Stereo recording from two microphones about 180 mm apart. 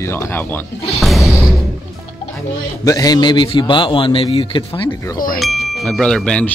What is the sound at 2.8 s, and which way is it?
A man's voice, 20° left (ahead or behind).